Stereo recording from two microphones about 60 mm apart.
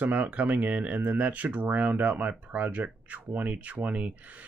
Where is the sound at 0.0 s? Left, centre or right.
Right.